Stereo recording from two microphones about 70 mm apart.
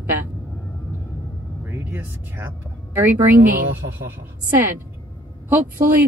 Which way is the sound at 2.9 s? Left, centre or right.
Right.